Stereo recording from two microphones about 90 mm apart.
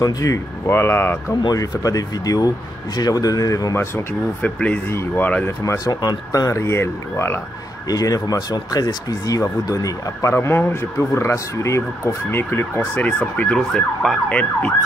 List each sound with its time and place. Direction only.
0.0 s speech: 40° left (ahead or behind)
0.7 s speech: 25° left (ahead or behind)
1.5 s speech: 40° left (ahead or behind)
3.7 s speech: 30° left (ahead or behind)
4.4 s speech: 15° left (ahead or behind)
5.9 s speech: 45° left (ahead or behind)
7.9 s speech: 40° left (ahead or behind)
10.3 s speech: 25° left (ahead or behind)